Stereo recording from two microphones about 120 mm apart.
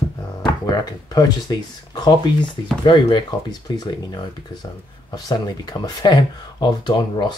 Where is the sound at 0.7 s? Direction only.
30° left (ahead or behind).